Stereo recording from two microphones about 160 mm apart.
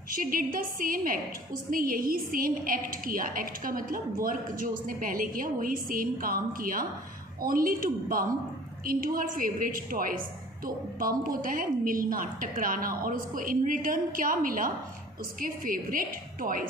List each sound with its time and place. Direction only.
0.1 s a woman's voice: 60° right (ahead or behind)